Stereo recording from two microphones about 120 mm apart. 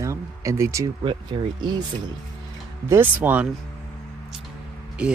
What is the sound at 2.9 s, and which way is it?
Speech, 15° right (ahead or behind).